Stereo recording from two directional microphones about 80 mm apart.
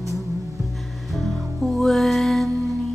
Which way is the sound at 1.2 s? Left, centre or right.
Centre.